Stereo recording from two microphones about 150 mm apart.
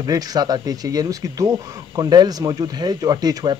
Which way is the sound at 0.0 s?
25° right (ahead or behind).